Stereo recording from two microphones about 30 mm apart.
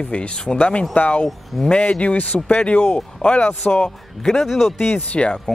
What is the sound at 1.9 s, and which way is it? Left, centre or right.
Speech, left.